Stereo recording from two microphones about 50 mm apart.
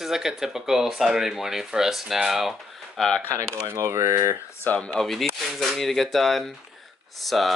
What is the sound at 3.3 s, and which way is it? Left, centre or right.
Speech, right.